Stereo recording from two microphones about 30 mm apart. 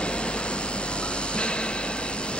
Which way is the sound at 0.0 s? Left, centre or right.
Left.